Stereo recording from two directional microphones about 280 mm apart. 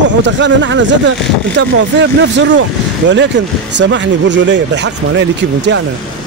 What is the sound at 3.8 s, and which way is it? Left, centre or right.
Speech, right.